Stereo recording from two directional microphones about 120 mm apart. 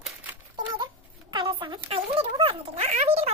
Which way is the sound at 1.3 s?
45° right (ahead or behind).